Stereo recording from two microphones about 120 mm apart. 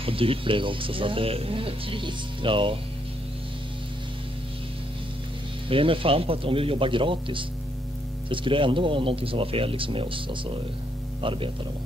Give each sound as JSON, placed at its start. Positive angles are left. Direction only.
{"t": 0.0, "sound": "speech", "side_deg": -50}
{"t": 5.7, "sound": "speech", "side_deg": -50}